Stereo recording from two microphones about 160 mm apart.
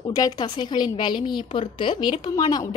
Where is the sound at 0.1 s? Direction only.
25° left (ahead or behind).